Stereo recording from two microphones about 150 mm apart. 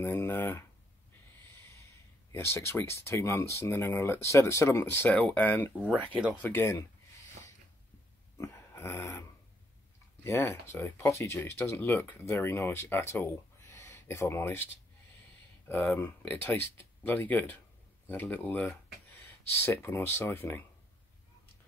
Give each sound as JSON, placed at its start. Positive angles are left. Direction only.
{"t": 0.0, "sound": "speech", "side_deg": 15}
{"t": 2.3, "sound": "speech", "side_deg": 15}
{"t": 8.4, "sound": "dog", "side_deg": 15}
{"t": 10.2, "sound": "speech", "side_deg": 15}